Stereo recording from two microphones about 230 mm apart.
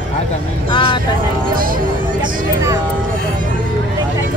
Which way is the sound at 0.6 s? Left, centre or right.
Centre.